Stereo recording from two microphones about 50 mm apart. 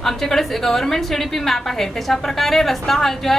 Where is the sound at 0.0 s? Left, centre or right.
Centre.